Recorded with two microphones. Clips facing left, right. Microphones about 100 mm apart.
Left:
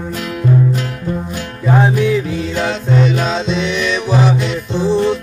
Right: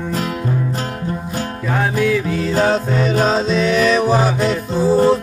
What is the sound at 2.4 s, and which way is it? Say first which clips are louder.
Music: right 3 dB; 40° right (ahead or behind).